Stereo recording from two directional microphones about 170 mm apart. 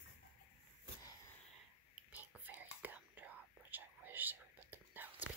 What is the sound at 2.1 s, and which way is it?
Whispering, 10° right (ahead or behind).